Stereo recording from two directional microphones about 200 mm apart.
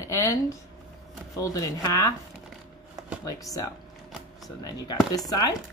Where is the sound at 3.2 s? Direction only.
15° left (ahead or behind).